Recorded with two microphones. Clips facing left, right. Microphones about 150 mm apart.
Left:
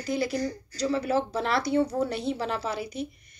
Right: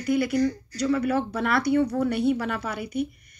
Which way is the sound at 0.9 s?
30° left (ahead or behind).